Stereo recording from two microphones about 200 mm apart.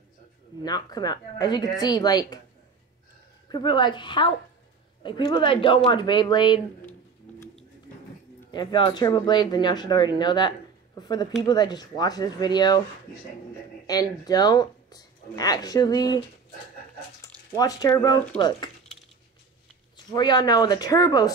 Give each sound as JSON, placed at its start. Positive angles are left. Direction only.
{"t": 0.7, "sound": "speech", "side_deg": 20}
{"t": 3.4, "sound": "speech", "side_deg": 20}
{"t": 7.3, "sound": "a sound", "side_deg": 5}
{"t": 8.5, "sound": "speech", "side_deg": 20}
{"t": 13.8, "sound": "speech", "side_deg": 20}
{"t": 17.6, "sound": "speech", "side_deg": 20}
{"t": 20.1, "sound": "speech", "side_deg": 20}